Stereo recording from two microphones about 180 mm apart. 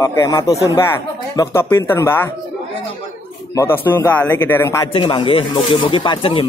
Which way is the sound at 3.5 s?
15° left (ahead or behind).